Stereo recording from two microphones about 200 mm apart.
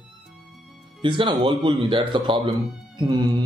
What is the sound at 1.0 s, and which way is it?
Music, 25° right (ahead or behind).